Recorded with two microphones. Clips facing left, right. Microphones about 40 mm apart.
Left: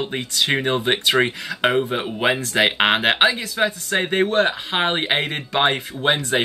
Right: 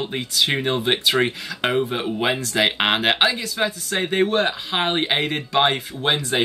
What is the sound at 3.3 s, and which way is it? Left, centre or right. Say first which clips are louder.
Speech: left 2 dB; left.